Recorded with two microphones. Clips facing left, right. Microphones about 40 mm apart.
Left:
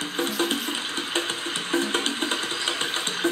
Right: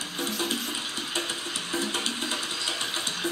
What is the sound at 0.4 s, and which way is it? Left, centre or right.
Music, left.